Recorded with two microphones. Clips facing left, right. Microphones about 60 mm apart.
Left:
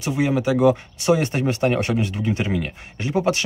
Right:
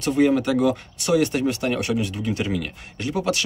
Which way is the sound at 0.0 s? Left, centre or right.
Centre.